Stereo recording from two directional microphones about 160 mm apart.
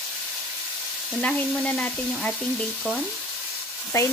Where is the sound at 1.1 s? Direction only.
5° left (ahead or behind).